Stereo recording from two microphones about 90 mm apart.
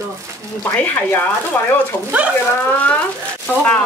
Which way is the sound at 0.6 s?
20° left (ahead or behind).